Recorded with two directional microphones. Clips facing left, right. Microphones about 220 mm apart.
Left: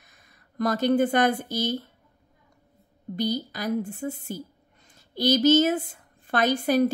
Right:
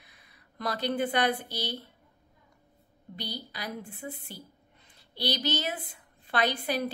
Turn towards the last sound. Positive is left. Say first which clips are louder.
# left 7 dB
turn(degrees=45)  # may be behind; listen again after turning